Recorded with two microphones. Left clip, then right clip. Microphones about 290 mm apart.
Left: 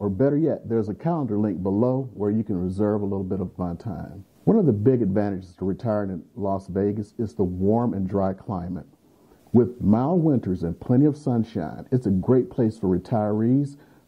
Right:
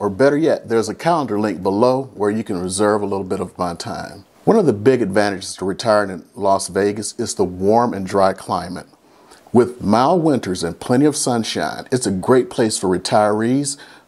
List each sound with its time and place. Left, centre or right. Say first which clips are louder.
0.0 s speech: right 7 dB; centre
2.9 s speech: right 8 dB; centre
3.3 s speech: right 8 dB; centre
3.9 s speech: right 10 dB; centre
4.6 s speech: right 6 dB; centre
7.3 s speech: right 8 dB; centre
8.0 s speech: right 10 dB; centre
9.8 s speech: right 8 dB; centre